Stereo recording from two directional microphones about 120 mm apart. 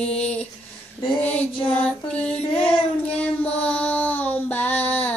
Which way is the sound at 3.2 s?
10° left (ahead or behind).